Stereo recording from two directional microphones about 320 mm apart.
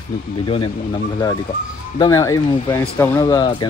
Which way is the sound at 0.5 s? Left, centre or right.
Centre.